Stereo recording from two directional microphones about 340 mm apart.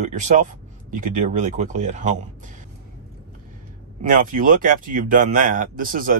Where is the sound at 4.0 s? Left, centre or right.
Right.